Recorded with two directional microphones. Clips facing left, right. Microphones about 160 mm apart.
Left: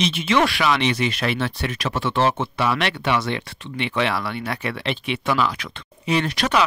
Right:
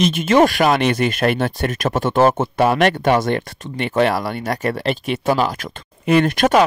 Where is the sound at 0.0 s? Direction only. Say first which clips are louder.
Right 6 dB; 45° right (ahead or behind).